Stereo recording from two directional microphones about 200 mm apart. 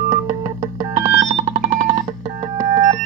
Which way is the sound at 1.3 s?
35° right (ahead or behind).